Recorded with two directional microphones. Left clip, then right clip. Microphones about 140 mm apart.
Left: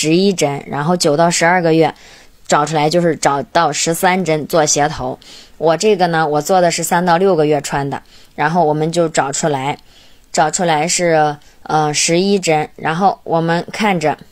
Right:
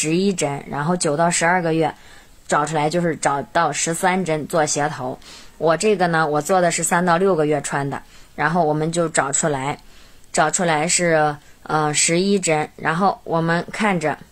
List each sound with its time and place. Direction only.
0.0 s a woman's voice: 40° left (ahead or behind)